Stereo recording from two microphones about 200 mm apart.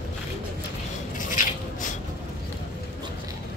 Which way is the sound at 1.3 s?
40° left (ahead or behind).